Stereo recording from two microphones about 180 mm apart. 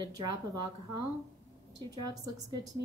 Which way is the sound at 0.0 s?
20° right (ahead or behind).